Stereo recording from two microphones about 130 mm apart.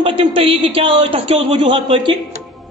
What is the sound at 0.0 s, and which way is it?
A woman's voice, 45° right (ahead or behind).